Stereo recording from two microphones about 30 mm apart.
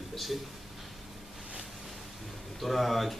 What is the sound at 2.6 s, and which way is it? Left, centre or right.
Speech, centre.